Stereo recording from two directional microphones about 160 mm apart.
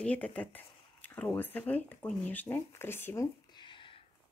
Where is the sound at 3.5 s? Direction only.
30° left (ahead or behind).